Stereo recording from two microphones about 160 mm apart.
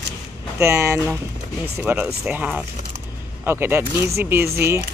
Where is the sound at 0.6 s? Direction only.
15° right (ahead or behind).